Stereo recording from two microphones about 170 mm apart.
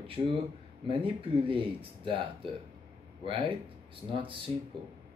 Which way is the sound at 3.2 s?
30° right (ahead or behind).